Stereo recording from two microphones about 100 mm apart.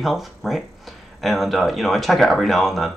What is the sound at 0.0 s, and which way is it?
Speech, centre (ahead or behind).